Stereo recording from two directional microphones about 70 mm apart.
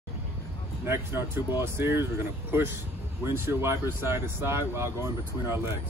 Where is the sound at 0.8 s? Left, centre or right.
Right.